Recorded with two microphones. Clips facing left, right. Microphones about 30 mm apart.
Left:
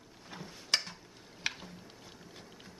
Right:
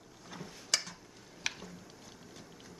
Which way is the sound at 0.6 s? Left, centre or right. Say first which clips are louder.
Left 2 dB; left.